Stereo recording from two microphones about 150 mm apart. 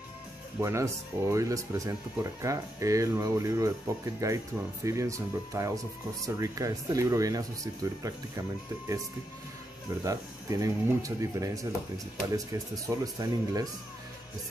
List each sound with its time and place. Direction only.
0.6 s speech: 20° right (ahead or behind)
10.0 s speech: 20° right (ahead or behind)
12.8 s speech: 20° right (ahead or behind)